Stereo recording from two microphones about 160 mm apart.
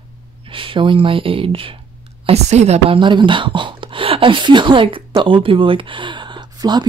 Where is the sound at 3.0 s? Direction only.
30° right (ahead or behind).